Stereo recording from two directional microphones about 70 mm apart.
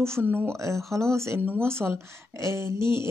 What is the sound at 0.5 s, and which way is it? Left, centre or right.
Speech, right.